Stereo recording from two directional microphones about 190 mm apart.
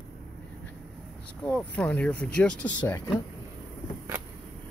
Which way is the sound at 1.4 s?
5° left (ahead or behind).